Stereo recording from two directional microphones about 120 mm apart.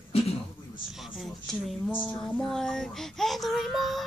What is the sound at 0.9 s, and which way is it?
Child singing, 5° right (ahead or behind).